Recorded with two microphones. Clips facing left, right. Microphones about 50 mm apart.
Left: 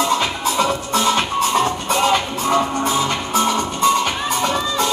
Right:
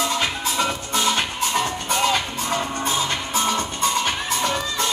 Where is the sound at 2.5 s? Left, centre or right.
Left.